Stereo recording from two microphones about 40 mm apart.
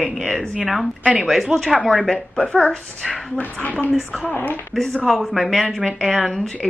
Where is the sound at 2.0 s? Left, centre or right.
Centre.